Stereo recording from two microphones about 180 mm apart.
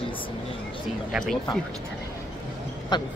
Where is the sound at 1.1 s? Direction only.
Centre (ahead or behind).